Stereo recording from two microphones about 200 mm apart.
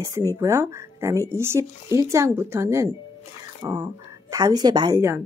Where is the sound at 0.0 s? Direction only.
15° right (ahead or behind).